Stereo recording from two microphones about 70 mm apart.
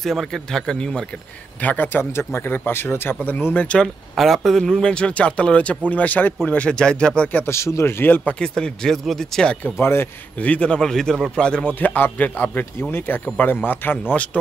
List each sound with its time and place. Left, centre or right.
0.0 s a man's voice: centre
1.6 s a man's voice: left
3.5 s a man's voice: centre
4.1 s a man's voice: centre
7.4 s a man's voice: left
8.0 s a man's voice: left
8.4 s a man's voice: centre
9.8 s a man's voice: left
10.4 s a man's voice: centre
11.6 s a man's voice: left